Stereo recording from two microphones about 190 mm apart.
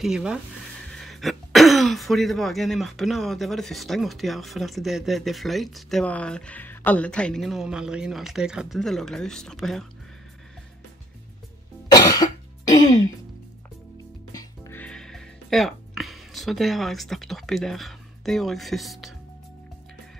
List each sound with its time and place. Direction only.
0.0 s speech: 5° right (ahead or behind)
11.9 s cough: 20° left (ahead or behind)
14.3 s music: 15° left (ahead or behind)